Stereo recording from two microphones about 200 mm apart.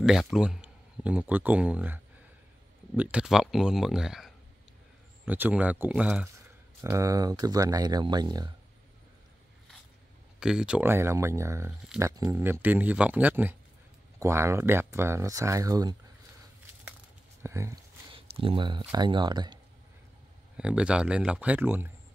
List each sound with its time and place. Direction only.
0.0 s speech: centre (ahead or behind)
3.0 s speech: 5° right (ahead or behind)
10.4 s speech: 5° right (ahead or behind); by 16.0 s 20° right (ahead or behind)
17.4 s speech: 15° right (ahead or behind)
18.1 s speech: 25° right (ahead or behind)
20.5 s speech: 5° right (ahead or behind)